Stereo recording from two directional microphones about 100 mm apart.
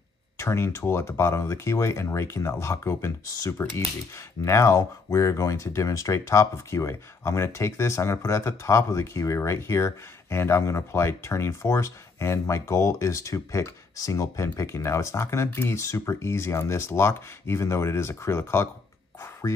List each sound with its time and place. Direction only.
0.4 s speech: 30° left (ahead or behind)